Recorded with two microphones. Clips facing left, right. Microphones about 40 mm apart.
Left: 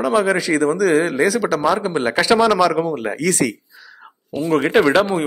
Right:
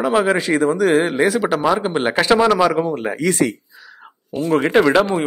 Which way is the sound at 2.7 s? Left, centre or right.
Centre.